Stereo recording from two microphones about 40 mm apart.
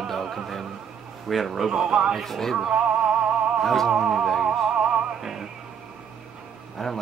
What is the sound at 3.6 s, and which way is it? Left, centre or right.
Music, centre.